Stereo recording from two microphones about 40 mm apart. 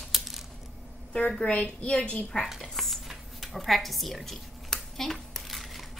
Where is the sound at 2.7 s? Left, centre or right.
Centre.